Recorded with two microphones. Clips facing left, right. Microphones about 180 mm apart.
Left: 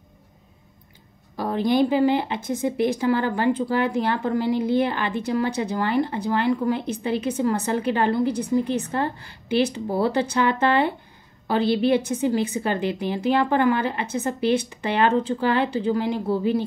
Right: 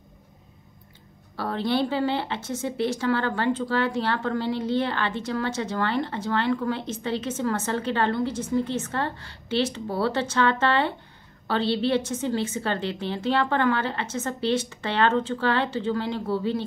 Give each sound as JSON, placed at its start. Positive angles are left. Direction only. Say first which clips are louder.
{"t": 1.3, "sound": "speech", "louder": "left 4 dB", "side_deg": 15}